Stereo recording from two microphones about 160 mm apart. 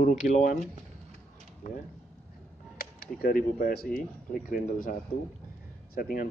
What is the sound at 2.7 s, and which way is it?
Speech, 65° left (ahead or behind).